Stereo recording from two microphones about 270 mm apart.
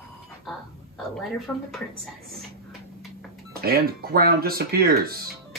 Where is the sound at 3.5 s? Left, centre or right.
Right.